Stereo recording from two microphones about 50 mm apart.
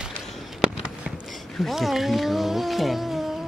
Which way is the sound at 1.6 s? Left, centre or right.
Centre.